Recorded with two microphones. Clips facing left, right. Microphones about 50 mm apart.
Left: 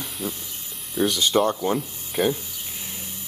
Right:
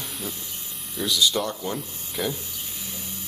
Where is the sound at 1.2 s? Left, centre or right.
Left.